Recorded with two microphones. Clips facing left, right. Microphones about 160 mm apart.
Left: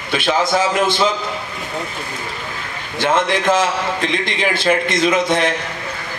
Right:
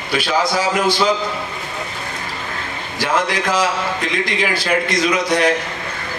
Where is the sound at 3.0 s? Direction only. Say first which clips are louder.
Left 2 dB; 25° left (ahead or behind).